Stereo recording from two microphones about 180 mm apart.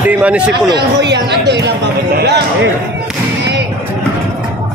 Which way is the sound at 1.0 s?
70° right (ahead or behind).